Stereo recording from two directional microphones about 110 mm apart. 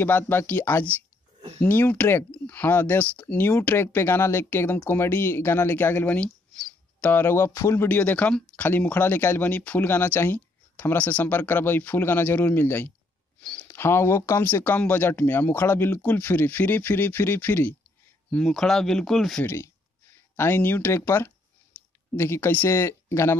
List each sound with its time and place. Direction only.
0.0 s speech: 20° left (ahead or behind)
13.4 s a sound: 10° left (ahead or behind)
13.7 s speech: 25° left (ahead or behind)
18.3 s speech: 5° left (ahead or behind)
19.4 s speech: 25° left (ahead or behind)